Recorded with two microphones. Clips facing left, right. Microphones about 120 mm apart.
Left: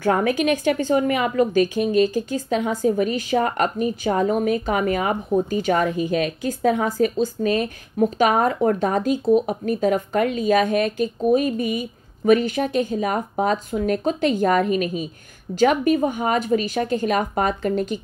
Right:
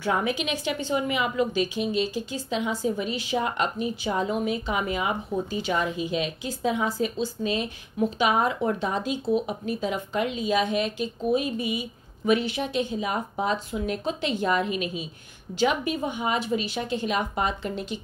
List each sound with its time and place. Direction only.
0.0 s a woman's voice: 50° left (ahead or behind)